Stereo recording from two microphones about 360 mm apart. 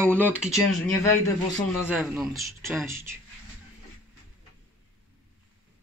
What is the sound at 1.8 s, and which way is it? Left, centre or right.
Speech, centre.